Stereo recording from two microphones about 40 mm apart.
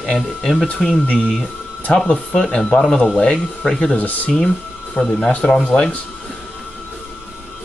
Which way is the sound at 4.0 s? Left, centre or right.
Left.